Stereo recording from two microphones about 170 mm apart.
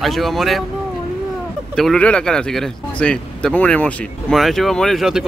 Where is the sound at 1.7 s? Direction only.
5° left (ahead or behind).